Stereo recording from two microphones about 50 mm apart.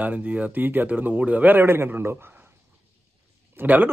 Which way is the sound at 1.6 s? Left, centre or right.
Right.